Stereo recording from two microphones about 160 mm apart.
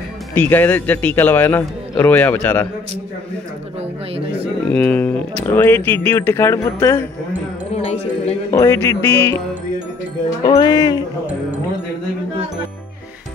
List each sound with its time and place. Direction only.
0.3 s a man's voice: 10° left (ahead or behind)
4.6 s a man's voice: 10° left (ahead or behind)
7.7 s music: 40° left (ahead or behind)
8.5 s a man's voice: 20° left (ahead or behind)
10.4 s speech: 25° left (ahead or behind)